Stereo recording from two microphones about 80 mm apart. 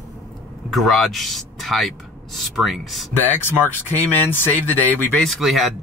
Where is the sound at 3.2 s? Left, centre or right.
Left.